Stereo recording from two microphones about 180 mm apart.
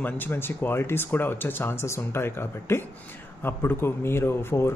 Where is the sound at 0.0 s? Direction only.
10° left (ahead or behind).